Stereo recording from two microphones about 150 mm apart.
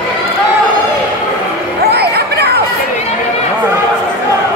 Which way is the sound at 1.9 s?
90° right.